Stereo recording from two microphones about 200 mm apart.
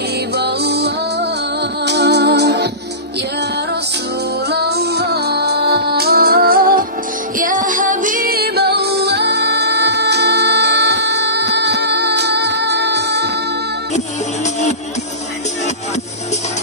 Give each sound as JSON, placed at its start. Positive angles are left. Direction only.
{"t": 0.3, "sound": "music", "side_deg": -55}
{"t": 4.5, "sound": "music", "side_deg": -55}
{"t": 13.9, "sound": "music", "side_deg": 35}